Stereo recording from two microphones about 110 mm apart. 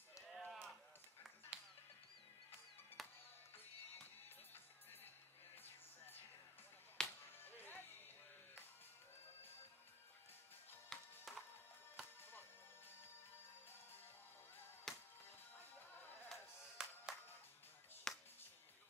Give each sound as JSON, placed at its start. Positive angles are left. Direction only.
{"t": 0.3, "sound": "a sound", "side_deg": 0}
{"t": 1.5, "sound": "music", "side_deg": -10}
{"t": 3.0, "sound": "music", "side_deg": 0}
{"t": 5.6, "sound": "music", "side_deg": 20}
{"t": 7.0, "sound": "music", "side_deg": 5}
{"t": 7.3, "sound": "music", "side_deg": 20}
{"t": 10.9, "sound": "music", "side_deg": 0}
{"t": 12.2, "sound": "music", "side_deg": 20}
{"t": 14.9, "sound": "music", "side_deg": 5}
{"t": 16.3, "sound": "music", "side_deg": -5}